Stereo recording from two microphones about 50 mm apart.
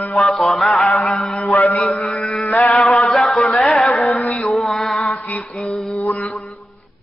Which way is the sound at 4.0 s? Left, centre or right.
Left.